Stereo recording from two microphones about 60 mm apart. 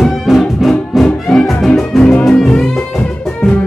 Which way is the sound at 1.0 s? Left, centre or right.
Centre.